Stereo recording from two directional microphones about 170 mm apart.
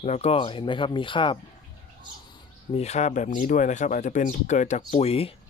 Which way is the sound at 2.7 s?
40° left (ahead or behind).